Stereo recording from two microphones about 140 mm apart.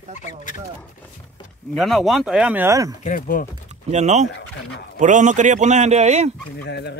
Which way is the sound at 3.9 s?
55° right (ahead or behind).